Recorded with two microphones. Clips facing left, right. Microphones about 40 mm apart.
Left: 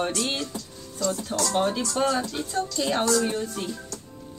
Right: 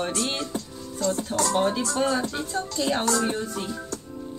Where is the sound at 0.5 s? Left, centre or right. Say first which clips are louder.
Right 4 dB; right.